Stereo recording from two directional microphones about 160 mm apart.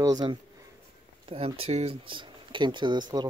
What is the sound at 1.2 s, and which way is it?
Speech, 35° right (ahead or behind).